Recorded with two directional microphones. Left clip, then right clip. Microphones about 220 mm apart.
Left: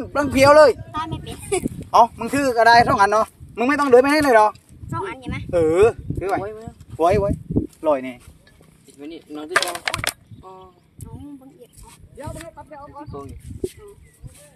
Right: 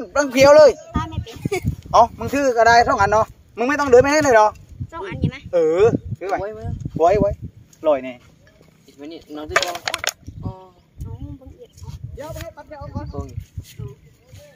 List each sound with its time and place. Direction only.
0.0 s speech: 15° left (ahead or behind)
0.9 s a sound: 25° left (ahead or behind)
1.9 s speech: 15° left (ahead or behind)
6.4 s speech: 10° right (ahead or behind)
7.0 s speech: 30° left (ahead or behind)
9.0 s speech: 5° right (ahead or behind)
9.5 s speech: 30° left (ahead or behind)
10.4 s a sound: centre (ahead or behind)
12.4 s speech: 5° left (ahead or behind)